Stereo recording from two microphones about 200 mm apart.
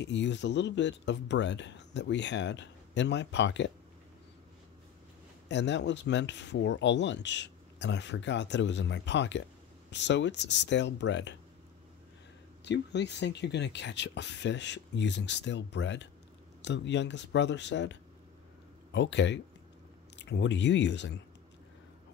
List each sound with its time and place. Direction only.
0.0 s speech: 60° left (ahead or behind)
5.5 s speech: 60° left (ahead or behind)
12.6 s speech: 60° left (ahead or behind)